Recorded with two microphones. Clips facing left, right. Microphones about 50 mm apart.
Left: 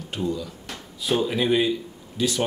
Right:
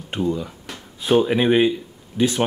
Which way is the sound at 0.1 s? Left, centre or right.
Right.